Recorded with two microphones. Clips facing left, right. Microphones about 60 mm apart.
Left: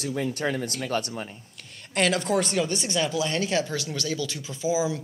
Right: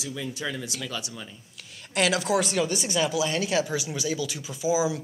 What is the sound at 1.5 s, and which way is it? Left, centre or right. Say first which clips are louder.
Speech: even; centre.